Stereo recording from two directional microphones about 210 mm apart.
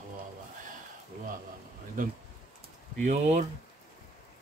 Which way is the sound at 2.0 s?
40° right (ahead or behind).